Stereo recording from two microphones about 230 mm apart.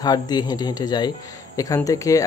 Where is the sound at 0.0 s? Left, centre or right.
Centre.